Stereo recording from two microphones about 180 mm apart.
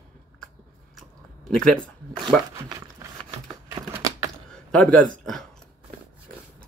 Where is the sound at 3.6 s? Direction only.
15° right (ahead or behind).